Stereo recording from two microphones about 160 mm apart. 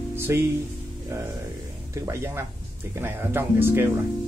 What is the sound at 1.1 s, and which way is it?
Speech, 15° right (ahead or behind).